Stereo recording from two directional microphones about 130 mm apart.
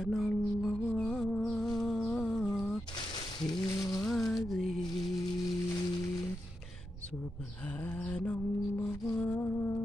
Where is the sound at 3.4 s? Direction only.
25° left (ahead or behind).